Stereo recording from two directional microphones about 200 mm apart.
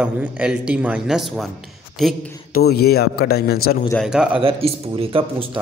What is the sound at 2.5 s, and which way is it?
Speech, 50° left (ahead or behind).